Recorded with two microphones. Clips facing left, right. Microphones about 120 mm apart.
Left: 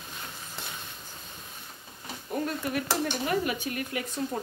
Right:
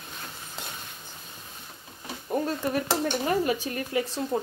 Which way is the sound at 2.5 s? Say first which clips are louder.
Right 3 dB; 35° right (ahead or behind).